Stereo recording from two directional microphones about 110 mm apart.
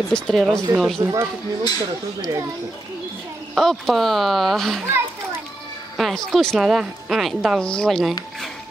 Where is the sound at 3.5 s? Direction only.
Centre (ahead or behind).